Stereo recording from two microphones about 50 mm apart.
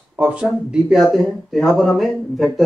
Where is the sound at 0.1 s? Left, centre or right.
Right.